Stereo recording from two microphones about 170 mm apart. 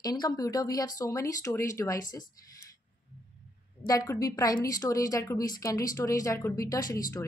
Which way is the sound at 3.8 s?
20° left (ahead or behind).